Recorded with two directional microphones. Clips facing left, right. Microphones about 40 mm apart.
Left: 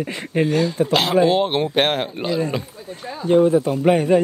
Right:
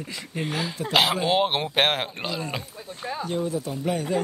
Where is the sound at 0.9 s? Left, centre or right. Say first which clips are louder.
Left 3 dB; centre.